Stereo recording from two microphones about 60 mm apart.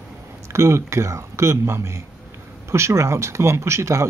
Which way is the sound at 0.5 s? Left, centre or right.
Right.